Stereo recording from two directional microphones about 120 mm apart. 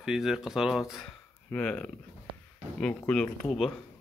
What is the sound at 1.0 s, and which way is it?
Speech, 10° left (ahead or behind).